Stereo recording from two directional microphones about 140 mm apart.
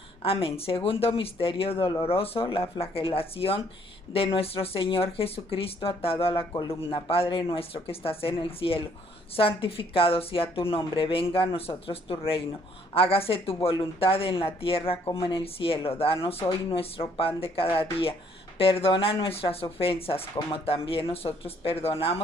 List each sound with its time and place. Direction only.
0.2 s speech: 40° left (ahead or behind)